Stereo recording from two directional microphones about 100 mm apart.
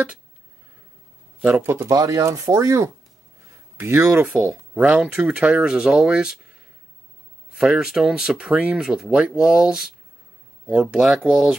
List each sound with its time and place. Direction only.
1.4 s speech: 20° right (ahead or behind)
7.5 s speech: 5° right (ahead or behind)